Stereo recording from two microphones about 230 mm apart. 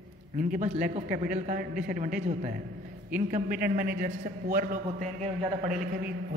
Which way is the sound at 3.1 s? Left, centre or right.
Right.